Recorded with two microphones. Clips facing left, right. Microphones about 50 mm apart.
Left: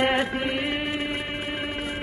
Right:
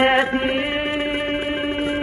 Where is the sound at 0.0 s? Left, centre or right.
Right.